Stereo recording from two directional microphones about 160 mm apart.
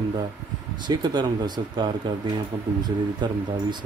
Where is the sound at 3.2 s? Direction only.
30° right (ahead or behind).